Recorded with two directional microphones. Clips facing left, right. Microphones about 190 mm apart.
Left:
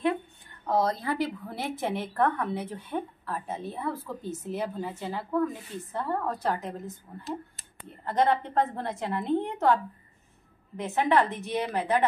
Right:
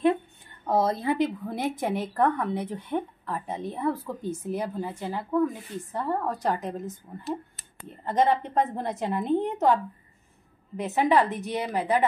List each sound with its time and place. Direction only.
0.7 s a woman's voice: 25° right (ahead or behind)
10.8 s speech: 15° right (ahead or behind)